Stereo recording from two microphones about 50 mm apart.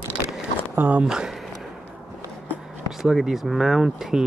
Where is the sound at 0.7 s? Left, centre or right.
Right.